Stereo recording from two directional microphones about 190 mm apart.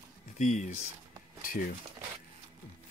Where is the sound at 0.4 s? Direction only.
40° left (ahead or behind).